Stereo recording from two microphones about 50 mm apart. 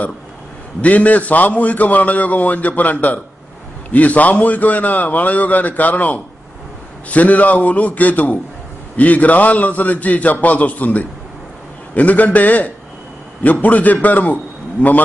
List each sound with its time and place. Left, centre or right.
0.7 s a man's voice: left